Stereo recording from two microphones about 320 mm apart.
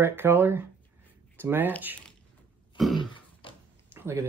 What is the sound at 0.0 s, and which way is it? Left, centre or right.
Speech, centre.